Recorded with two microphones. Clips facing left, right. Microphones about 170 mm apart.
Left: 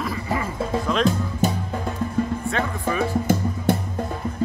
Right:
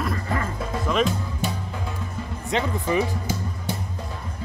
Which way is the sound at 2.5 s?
20° right (ahead or behind).